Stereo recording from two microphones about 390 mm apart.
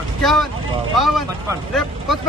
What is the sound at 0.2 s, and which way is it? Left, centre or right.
Speech, centre.